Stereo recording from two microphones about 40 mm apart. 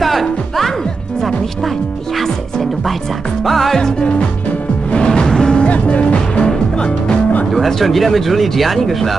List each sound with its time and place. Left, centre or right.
0.0 s music: centre
3.4 s speech: centre
4.0 s music: left
5.7 s music: left
7.5 s speech: centre